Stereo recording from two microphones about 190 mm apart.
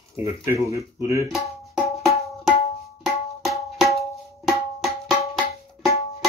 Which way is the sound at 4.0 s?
Centre (ahead or behind).